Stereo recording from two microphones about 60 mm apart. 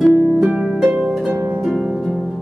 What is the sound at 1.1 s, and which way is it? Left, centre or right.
Harp, centre.